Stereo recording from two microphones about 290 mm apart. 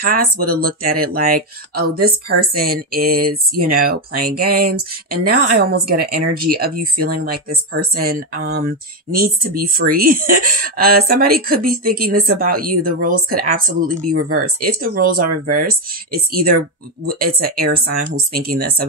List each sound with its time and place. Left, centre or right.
0.0 s speech: right